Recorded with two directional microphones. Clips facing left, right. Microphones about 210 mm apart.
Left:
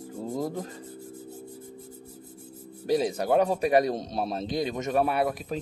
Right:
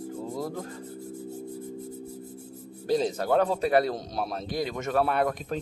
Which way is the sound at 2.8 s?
10° left (ahead or behind).